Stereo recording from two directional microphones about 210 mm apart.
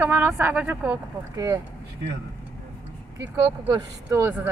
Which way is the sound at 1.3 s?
15° right (ahead or behind).